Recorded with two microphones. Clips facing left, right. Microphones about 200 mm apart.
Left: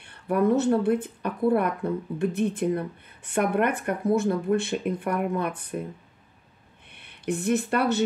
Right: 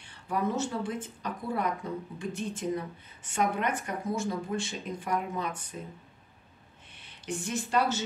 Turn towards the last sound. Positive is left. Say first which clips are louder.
# left 5 dB
turn(degrees=60)  # may be behind; listen again after turning